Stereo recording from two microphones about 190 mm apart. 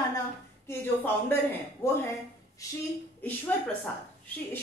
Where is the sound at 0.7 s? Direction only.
10° left (ahead or behind).